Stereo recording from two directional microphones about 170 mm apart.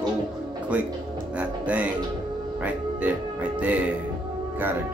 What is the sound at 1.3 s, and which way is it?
Speech, 10° right (ahead or behind).